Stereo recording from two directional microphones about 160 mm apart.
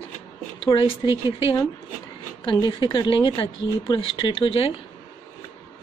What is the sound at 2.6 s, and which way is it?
A woman's voice, 30° left (ahead or behind).